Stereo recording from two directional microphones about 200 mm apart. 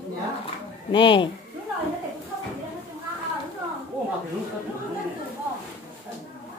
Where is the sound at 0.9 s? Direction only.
25° left (ahead or behind).